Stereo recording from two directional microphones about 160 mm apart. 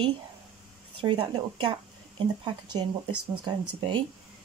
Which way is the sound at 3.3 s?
30° right (ahead or behind).